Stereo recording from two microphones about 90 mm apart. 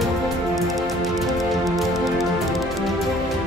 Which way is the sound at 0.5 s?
Centre (ahead or behind).